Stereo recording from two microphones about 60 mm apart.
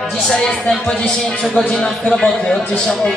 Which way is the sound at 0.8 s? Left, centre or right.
Centre.